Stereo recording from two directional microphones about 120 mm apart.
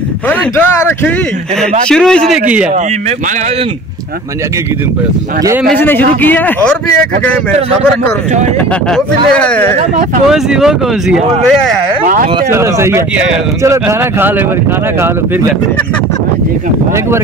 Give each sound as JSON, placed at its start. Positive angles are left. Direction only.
{"t": 0.3, "sound": "speech", "side_deg": 15}
{"t": 1.9, "sound": "speech", "side_deg": 5}
{"t": 5.8, "sound": "speech", "side_deg": 15}
{"t": 8.9, "sound": "speech", "side_deg": 10}
{"t": 9.8, "sound": "speech", "side_deg": -75}
{"t": 10.3, "sound": "speech", "side_deg": -5}
{"t": 12.4, "sound": "speech", "side_deg": -25}